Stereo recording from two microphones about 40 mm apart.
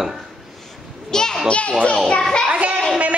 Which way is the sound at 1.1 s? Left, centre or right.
Centre.